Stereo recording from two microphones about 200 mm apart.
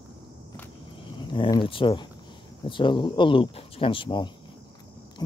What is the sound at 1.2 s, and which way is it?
Speech, 25° left (ahead or behind).